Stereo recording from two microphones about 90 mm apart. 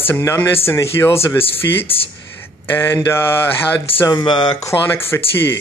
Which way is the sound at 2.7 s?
25° left (ahead or behind).